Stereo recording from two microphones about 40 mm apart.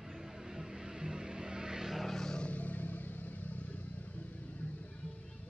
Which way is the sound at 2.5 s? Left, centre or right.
Left.